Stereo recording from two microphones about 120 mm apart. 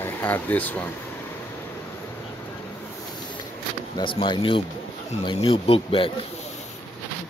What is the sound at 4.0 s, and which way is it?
Speech, 40° left (ahead or behind).